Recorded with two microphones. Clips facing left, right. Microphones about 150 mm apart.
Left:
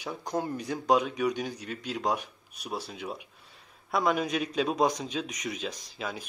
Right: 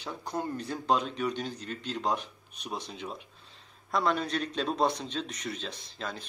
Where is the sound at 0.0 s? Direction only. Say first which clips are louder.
Left 2 dB; 15° left (ahead or behind).